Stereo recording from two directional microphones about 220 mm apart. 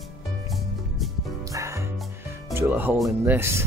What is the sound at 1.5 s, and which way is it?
Music, 15° right (ahead or behind).